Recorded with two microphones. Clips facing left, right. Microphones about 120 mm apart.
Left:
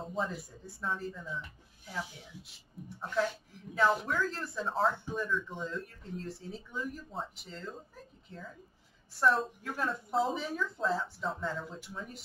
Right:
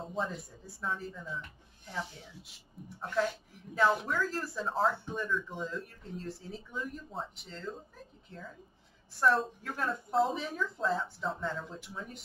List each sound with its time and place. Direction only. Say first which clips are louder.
0.0 s speech: even; centre (ahead or behind)
9.1 s speech: even; centre (ahead or behind)